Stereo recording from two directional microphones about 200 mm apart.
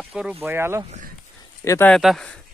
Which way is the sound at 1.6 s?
15° left (ahead or behind).